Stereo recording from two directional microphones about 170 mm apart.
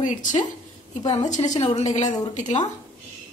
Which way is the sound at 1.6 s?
40° left (ahead or behind).